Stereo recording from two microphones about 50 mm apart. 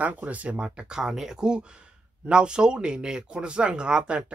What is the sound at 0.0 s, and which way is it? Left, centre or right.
Speech, right.